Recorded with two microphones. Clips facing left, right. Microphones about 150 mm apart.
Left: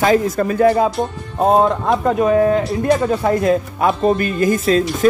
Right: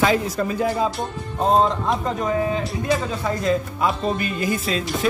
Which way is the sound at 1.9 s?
60° left (ahead or behind).